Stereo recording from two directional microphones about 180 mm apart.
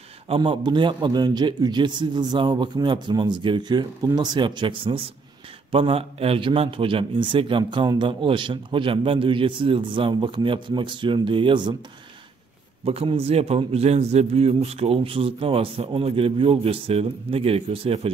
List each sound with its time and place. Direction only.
0.3 s a man's voice: 25° right (ahead or behind)
12.8 s a man's voice: 30° right (ahead or behind)